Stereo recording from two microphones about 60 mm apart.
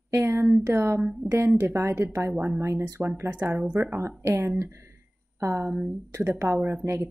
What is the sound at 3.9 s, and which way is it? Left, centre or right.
A woman's voice, right.